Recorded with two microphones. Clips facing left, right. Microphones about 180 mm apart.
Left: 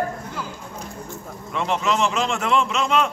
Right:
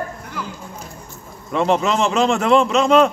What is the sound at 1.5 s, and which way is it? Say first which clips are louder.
A man's voice: right 5 dB; 40° right (ahead or behind).